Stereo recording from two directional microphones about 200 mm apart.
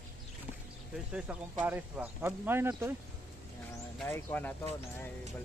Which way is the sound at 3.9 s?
10° left (ahead or behind).